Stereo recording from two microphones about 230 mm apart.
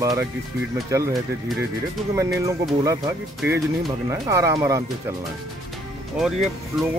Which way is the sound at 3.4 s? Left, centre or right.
Centre.